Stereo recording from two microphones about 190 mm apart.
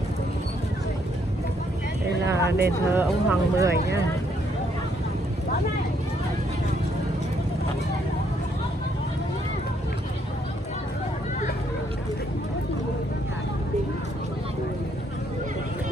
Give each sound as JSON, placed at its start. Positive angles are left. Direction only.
{"t": 2.4, "sound": "speech", "side_deg": -55}
{"t": 2.8, "sound": "speech", "side_deg": -15}